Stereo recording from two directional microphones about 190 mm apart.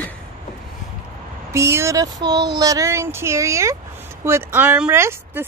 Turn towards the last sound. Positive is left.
turn(degrees=-10)  # may be behind; listen again after turning